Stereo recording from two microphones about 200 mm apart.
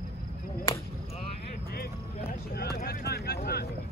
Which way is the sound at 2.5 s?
50° left (ahead or behind).